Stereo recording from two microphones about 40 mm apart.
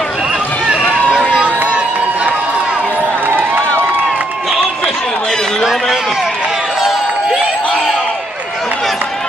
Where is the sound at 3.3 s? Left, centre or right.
Right.